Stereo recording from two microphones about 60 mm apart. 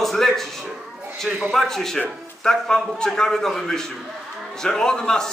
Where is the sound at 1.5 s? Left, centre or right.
Centre.